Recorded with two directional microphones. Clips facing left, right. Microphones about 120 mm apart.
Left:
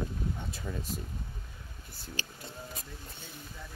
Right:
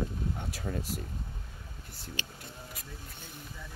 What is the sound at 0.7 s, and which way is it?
Speech, 45° right (ahead or behind).